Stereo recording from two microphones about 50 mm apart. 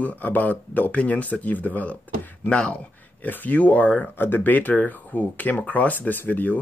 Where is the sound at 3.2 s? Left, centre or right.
Left.